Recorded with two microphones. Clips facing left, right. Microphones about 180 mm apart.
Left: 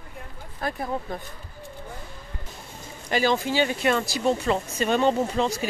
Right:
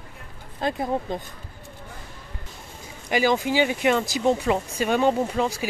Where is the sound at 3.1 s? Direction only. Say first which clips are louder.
Right 2 dB; 15° right (ahead or behind).